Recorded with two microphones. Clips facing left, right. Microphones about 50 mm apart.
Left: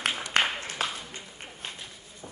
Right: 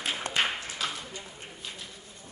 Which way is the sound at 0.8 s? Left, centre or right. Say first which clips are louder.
Left 2 dB; left.